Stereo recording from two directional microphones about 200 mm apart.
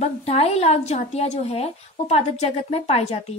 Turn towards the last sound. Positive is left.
turn(degrees=30)  # may be behind; listen again after turning